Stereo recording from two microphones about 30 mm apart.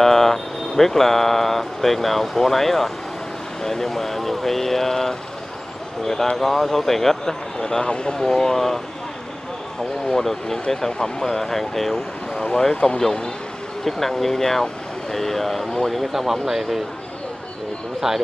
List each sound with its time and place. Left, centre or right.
0.0 s speech: centre
6.3 s speech: centre
7.8 s speech: left
8.2 s speech: centre
10.1 s speech: centre
10.9 s speech: left
11.2 s speech: centre
12.9 s speech: left
13.8 s speech: centre
16.1 s speech: centre
18.0 s speech: centre